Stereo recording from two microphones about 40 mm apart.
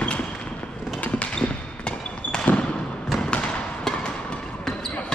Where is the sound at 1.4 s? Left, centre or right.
Left.